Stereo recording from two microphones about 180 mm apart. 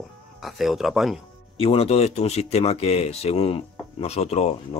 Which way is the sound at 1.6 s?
35° left (ahead or behind).